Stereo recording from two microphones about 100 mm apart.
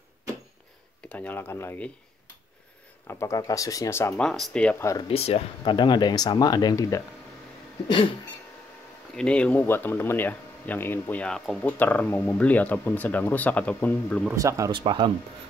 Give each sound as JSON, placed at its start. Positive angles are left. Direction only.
{"t": 1.0, "sound": "speech", "side_deg": 15}
{"t": 3.1, "sound": "speech", "side_deg": 30}
{"t": 4.2, "sound": "speech", "side_deg": 5}
{"t": 5.0, "sound": "speech", "side_deg": 80}
{"t": 5.7, "sound": "speech", "side_deg": 50}
{"t": 9.1, "sound": "speech", "side_deg": 10}
{"t": 11.2, "sound": "speech", "side_deg": 5}
{"t": 11.6, "sound": "speech", "side_deg": 15}
{"t": 14.3, "sound": "speech", "side_deg": -35}
{"t": 14.7, "sound": "speech", "side_deg": -55}